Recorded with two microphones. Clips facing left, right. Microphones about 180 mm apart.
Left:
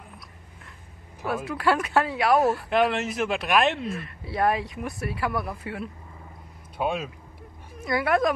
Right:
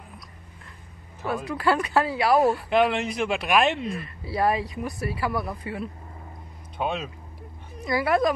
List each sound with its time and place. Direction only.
1.2 s speech: centre (ahead or behind)